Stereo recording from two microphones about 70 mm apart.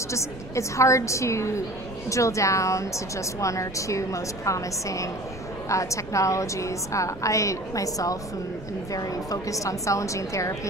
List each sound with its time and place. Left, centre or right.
0.1 s a woman's voice: left